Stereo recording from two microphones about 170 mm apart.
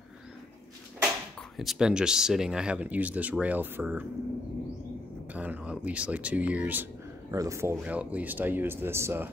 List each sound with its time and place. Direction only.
1.6 s speech: centre (ahead or behind)
5.3 s speech: 10° right (ahead or behind)